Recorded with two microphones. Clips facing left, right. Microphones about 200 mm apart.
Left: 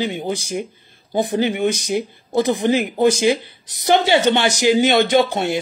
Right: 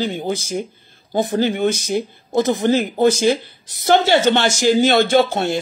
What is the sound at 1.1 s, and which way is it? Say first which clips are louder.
Speech: even; 15° left (ahead or behind).